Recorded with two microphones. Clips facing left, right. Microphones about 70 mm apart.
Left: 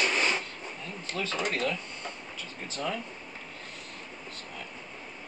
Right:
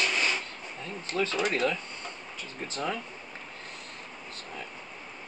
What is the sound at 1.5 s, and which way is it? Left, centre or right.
Speech, right.